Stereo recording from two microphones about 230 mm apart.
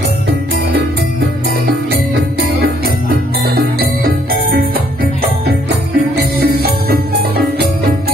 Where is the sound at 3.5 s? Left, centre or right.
Right.